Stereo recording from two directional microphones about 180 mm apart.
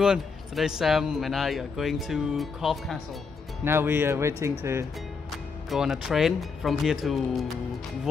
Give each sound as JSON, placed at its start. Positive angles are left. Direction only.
{"t": 0.0, "sound": "a man's voice", "side_deg": -5}
{"t": 3.6, "sound": "speech", "side_deg": -15}
{"t": 5.7, "sound": "a man's voice", "side_deg": 0}